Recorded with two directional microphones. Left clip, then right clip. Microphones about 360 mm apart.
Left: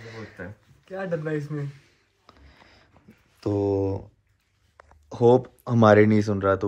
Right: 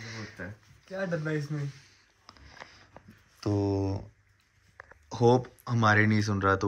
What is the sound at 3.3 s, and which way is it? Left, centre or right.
Speech, centre.